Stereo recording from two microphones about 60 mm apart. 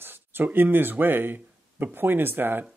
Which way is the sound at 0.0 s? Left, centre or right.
Right.